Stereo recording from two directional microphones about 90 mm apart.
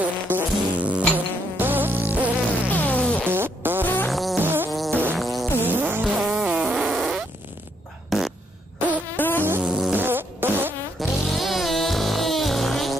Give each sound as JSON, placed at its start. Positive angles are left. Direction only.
{"t": 0.3, "sound": "insect", "side_deg": -15}
{"t": 2.7, "sound": "music", "side_deg": 15}
{"t": 3.3, "sound": "music", "side_deg": -25}
{"t": 3.8, "sound": "fart", "side_deg": 20}
{"t": 4.1, "sound": "music", "side_deg": 0}
{"t": 4.4, "sound": "music", "side_deg": -25}
{"t": 4.6, "sound": "music", "side_deg": 0}
{"t": 5.7, "sound": "vehicle", "side_deg": -20}
{"t": 6.0, "sound": "fart", "side_deg": -5}
{"t": 9.1, "sound": "buzz", "side_deg": 20}
{"t": 9.6, "sound": "a sound", "side_deg": -10}
{"t": 9.9, "sound": "a sound", "side_deg": -25}
{"t": 11.0, "sound": "music", "side_deg": 0}